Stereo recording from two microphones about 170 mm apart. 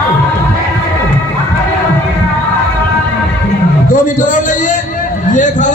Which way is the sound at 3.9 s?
50° left (ahead or behind).